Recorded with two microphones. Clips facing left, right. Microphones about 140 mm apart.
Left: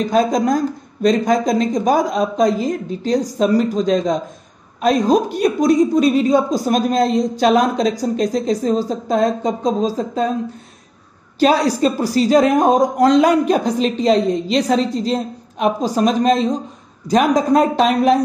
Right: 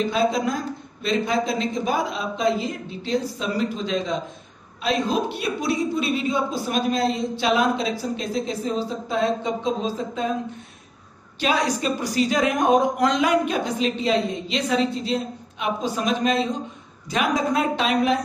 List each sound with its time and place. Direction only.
0.0 s a man's voice: 45° left (ahead or behind)
11.3 s a man's voice: 35° left (ahead or behind)